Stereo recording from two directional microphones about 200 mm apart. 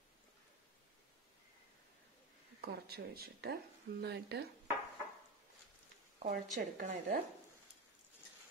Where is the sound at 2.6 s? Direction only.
50° right (ahead or behind).